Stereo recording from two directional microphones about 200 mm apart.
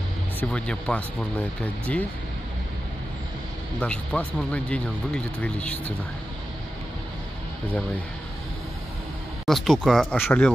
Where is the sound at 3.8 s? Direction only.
5° left (ahead or behind).